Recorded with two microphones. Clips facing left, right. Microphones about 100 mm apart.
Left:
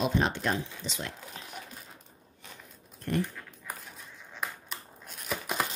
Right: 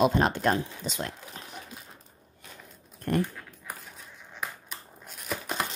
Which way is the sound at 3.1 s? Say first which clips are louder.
Right 3 dB; 50° right (ahead or behind).